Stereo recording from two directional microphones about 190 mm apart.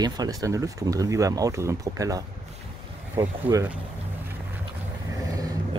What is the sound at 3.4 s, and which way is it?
Speech, 15° right (ahead or behind).